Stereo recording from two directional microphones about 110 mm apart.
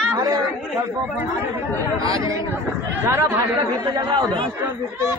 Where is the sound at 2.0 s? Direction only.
35° right (ahead or behind).